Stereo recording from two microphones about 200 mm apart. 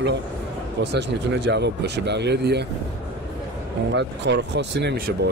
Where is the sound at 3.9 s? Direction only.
60° right (ahead or behind).